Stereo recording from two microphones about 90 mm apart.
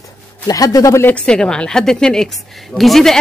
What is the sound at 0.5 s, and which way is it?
Speech, 40° left (ahead or behind).